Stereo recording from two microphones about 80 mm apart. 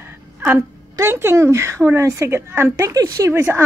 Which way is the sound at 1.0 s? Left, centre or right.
Right.